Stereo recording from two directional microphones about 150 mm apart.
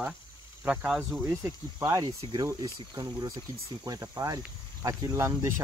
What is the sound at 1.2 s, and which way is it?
Speech, 15° right (ahead or behind).